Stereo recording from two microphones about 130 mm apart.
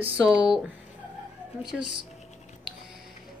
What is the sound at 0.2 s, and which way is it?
Speech, 5° right (ahead or behind).